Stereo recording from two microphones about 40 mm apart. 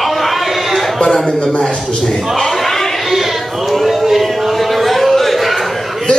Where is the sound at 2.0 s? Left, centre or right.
Centre.